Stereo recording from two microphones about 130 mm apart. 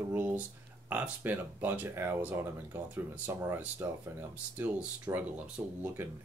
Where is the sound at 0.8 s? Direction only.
10° right (ahead or behind).